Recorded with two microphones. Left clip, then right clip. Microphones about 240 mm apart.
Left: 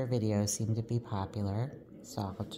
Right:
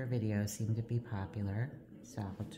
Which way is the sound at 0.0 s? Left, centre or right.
Centre.